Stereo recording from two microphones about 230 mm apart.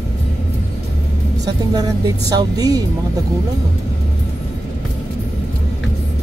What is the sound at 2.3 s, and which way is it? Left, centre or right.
Speech, centre.